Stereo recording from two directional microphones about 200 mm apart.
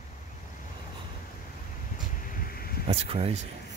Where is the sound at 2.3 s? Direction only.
50° left (ahead or behind).